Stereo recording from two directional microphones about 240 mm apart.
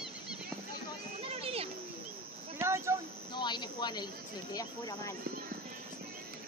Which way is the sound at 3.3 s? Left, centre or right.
Centre.